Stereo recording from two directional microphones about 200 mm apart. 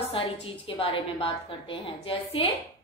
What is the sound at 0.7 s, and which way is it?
A woman's voice, 25° left (ahead or behind).